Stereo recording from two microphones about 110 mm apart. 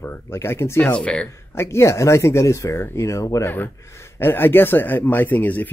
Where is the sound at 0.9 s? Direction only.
10° left (ahead or behind).